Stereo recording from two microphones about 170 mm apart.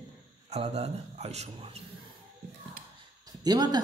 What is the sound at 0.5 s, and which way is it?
A man's voice, 40° right (ahead or behind).